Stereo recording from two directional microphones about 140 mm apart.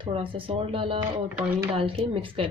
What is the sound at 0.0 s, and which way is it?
A woman's voice, 40° right (ahead or behind).